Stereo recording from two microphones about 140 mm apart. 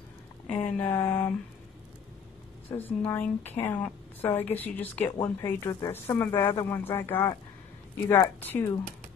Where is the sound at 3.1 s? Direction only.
15° left (ahead or behind).